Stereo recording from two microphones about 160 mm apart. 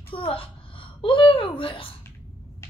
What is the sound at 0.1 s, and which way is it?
A woman's voice, 35° left (ahead or behind).